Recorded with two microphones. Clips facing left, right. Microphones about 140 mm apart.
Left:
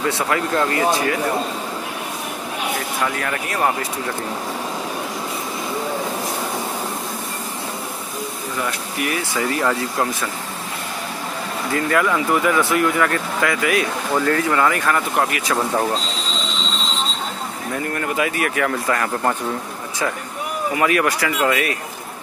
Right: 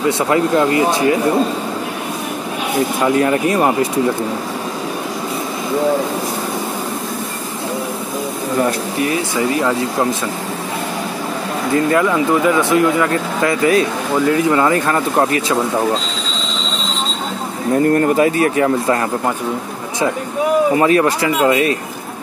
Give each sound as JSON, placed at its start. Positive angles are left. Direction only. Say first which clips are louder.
{"t": 0.3, "sound": "speech", "louder": "right 7 dB", "side_deg": -20}
{"t": 3.0, "sound": "speech", "louder": "right 11 dB", "side_deg": -25}
{"t": 9.0, "sound": "speech", "louder": "right 4 dB", "side_deg": -25}
{"t": 11.7, "sound": "speech", "louder": "right 4 dB", "side_deg": -25}
{"t": 14.2, "sound": "speech", "louder": "right 5 dB", "side_deg": -20}
{"t": 17.7, "sound": "speech", "louder": "right 10 dB", "side_deg": -40}
{"t": 20.7, "sound": "speech", "louder": "right 6 dB", "side_deg": -30}